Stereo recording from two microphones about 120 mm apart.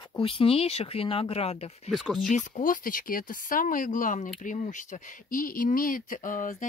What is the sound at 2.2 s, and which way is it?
Speech, 90° left.